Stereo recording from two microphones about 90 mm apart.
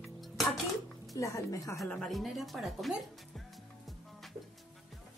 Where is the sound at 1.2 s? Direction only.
40° left (ahead or behind).